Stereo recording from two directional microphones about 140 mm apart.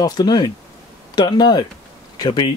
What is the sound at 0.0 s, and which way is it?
Speech, 30° left (ahead or behind).